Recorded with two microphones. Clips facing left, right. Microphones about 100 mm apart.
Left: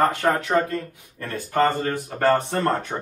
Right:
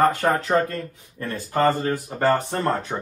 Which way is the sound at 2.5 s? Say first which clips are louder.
Left 1 dB; 15° right (ahead or behind).